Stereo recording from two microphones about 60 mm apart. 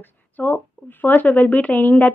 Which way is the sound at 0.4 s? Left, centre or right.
Left.